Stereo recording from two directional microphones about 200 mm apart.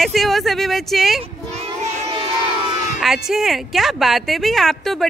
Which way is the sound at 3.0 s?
Centre (ahead or behind).